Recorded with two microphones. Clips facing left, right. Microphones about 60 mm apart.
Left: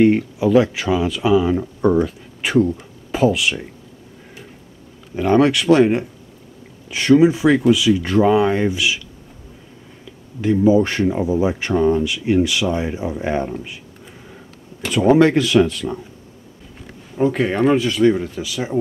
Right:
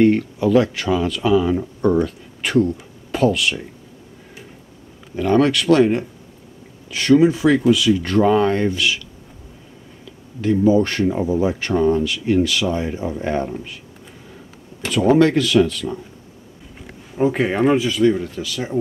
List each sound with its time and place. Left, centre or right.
0.0 s speech: centre
5.1 s speech: centre
10.4 s speech: centre
14.9 s speech: centre
16.8 s speech: centre
18.0 s speech: centre